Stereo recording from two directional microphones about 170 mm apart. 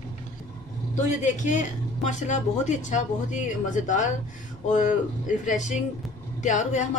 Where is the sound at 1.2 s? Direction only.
45° left (ahead or behind).